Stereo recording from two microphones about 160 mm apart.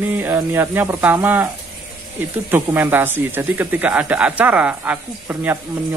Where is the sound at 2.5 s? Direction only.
10° right (ahead or behind).